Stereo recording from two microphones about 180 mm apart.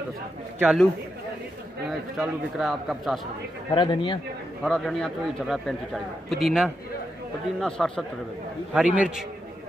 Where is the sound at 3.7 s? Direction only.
25° left (ahead or behind).